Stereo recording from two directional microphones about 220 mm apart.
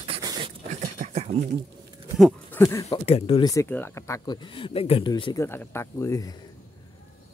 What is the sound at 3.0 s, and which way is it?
Speech, 25° left (ahead or behind).